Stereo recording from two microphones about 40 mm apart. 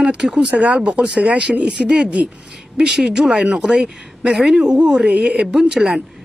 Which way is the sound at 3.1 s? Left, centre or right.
Centre.